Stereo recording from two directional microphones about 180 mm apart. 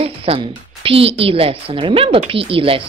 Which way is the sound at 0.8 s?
30° right (ahead or behind).